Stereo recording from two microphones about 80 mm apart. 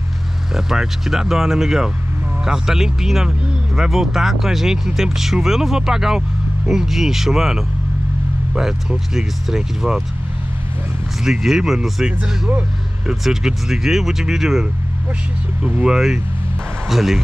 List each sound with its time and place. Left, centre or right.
0.6 s speech: centre
11.2 s speech: centre
12.2 s speech: centre
13.1 s speech: centre